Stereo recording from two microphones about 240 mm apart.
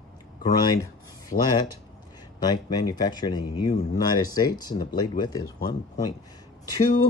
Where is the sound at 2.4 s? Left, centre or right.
Centre.